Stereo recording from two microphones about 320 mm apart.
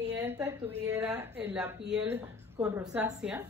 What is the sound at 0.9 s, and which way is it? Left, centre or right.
A woman's voice, centre.